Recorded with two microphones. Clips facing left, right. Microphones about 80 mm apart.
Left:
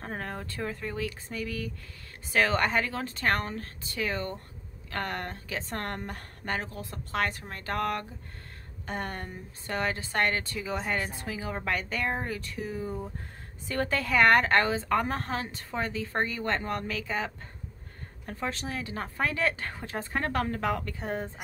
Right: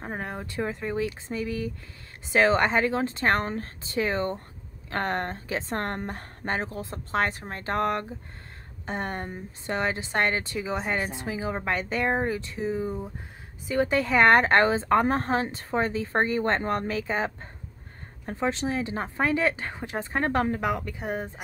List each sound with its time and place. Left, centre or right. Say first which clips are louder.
0.0 s a woman's voice: right 2 dB; centre